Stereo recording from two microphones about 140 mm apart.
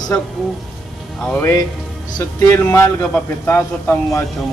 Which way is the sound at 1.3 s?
15° left (ahead or behind).